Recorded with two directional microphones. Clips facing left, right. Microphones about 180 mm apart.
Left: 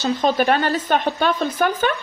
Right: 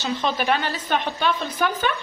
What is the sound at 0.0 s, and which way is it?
A woman's voice, 40° left (ahead or behind).